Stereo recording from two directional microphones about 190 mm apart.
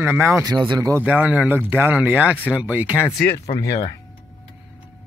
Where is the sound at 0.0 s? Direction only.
10° right (ahead or behind).